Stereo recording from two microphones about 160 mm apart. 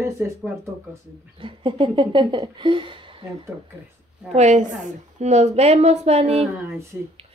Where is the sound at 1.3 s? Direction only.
30° right (ahead or behind).